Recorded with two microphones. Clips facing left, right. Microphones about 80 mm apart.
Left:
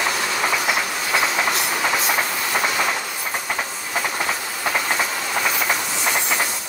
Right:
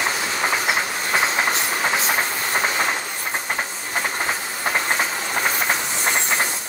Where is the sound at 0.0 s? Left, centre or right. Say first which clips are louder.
Left 1 dB; right.